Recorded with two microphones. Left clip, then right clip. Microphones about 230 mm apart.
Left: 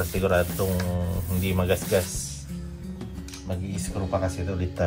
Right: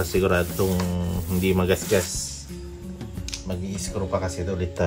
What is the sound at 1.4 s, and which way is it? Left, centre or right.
Speech, right.